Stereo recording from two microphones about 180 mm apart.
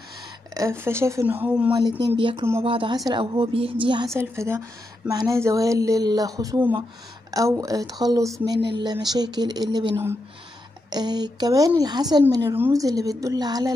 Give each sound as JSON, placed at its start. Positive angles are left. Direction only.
{"t": 0.6, "sound": "speech", "side_deg": -15}
{"t": 1.8, "sound": "a woman's voice", "side_deg": -25}
{"t": 4.1, "sound": "a woman's voice", "side_deg": -15}
{"t": 8.5, "sound": "speech", "side_deg": -70}
{"t": 8.8, "sound": "a woman's voice", "side_deg": -20}